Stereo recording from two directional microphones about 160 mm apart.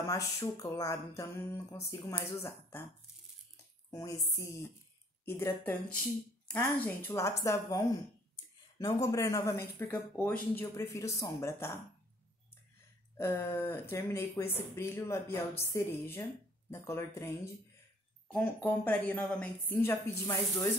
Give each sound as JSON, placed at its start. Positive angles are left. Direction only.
{"t": 0.0, "sound": "music", "side_deg": 20}
{"t": 3.9, "sound": "music", "side_deg": 20}
{"t": 5.2, "sound": "speech", "side_deg": 15}
{"t": 9.0, "sound": "music", "side_deg": 20}
{"t": 9.8, "sound": "speech", "side_deg": 10}
{"t": 13.2, "sound": "speech", "side_deg": 15}
{"t": 18.3, "sound": "speech", "side_deg": 10}